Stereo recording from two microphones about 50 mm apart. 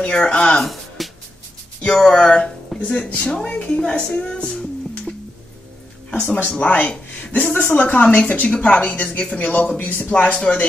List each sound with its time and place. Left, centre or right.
0.0 s speech: left
0.7 s music: centre
2.0 s speech: centre
6.0 s speech: left
9.8 s speech: left
10.0 s speech: left